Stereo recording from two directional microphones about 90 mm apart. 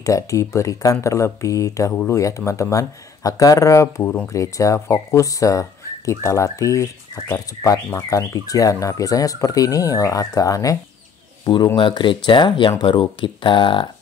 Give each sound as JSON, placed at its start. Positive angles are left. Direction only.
{"t": 0.0, "sound": "speech", "side_deg": 35}
{"t": 4.0, "sound": "speech", "side_deg": 10}
{"t": 4.3, "sound": "speech", "side_deg": 35}
{"t": 11.4, "sound": "speech", "side_deg": 60}